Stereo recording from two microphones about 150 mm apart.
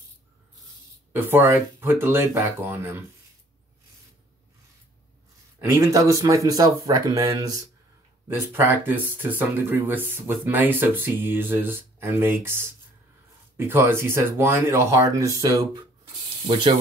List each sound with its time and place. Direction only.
1.1 s speech: 15° right (ahead or behind)
5.6 s speech: 20° right (ahead or behind)